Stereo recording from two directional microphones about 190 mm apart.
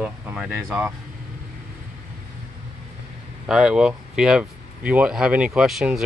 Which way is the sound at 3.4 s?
5° right (ahead or behind).